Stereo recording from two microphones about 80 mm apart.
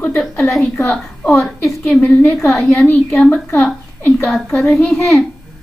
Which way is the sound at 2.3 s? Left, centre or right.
Centre.